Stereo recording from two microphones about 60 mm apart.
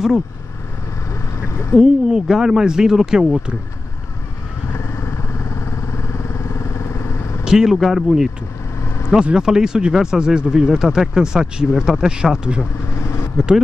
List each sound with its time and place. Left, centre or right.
1.1 s vehicle: left
1.8 s speech: centre
4.7 s vehicle: left
7.4 s speech: centre
8.8 s vehicle: left
9.1 s speech: centre